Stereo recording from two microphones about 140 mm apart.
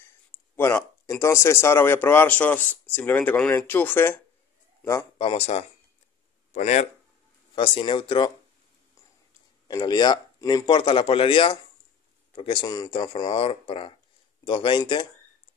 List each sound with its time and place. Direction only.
0.6 s speech: 20° left (ahead or behind)
5.2 s speech: 45° left (ahead or behind)
7.5 s speech: 35° left (ahead or behind)
9.7 s speech: 30° left (ahead or behind)